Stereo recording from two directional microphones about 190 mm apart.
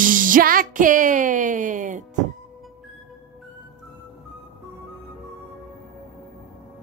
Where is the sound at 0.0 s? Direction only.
45° right (ahead or behind).